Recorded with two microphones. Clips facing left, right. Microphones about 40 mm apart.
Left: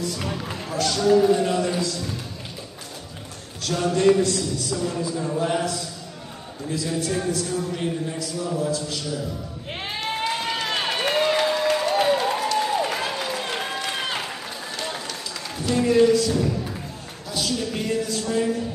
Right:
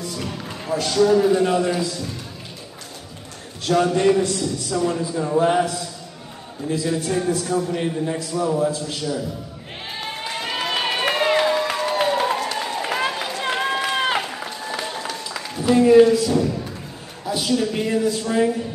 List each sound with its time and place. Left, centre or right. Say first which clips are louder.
0.2 s music: left 1 dB; centre
0.7 s a man's voice: right 3 dB; centre
3.6 s a man's voice: right 2 dB; centre
7.1 s a man's voice: right 3 dB; centre
8.1 s a man's voice: right 5 dB; right
10.2 s run: right 2 dB; centre
15.6 s a man's voice: right 6 dB; centre
17.3 s a man's voice: right 5 dB; centre